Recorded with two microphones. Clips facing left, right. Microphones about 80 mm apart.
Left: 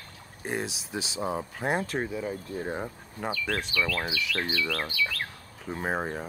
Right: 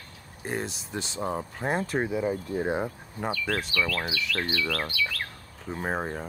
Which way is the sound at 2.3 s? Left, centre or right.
Right.